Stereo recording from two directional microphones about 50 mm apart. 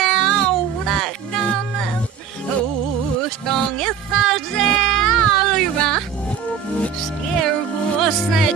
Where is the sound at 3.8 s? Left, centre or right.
Centre.